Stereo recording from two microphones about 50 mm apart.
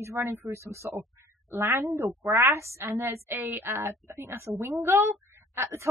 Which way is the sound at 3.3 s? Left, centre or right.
Right.